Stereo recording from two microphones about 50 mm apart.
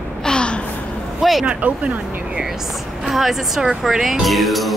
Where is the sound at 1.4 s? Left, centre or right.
Right.